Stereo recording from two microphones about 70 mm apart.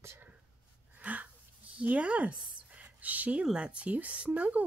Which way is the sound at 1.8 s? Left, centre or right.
Centre.